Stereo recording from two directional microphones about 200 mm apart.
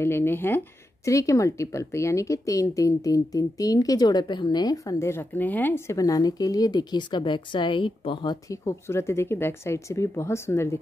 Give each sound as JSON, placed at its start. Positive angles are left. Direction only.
{"t": 0.0, "sound": "a woman's voice", "side_deg": 10}